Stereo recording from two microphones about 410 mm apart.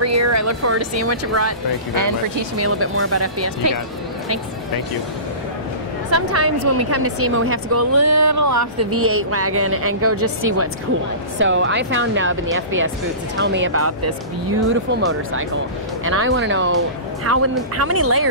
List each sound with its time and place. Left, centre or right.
0.0 s speech: right
2.0 s speech: right
2.6 s speech: right
6.0 s speech: right
16.0 s speech: right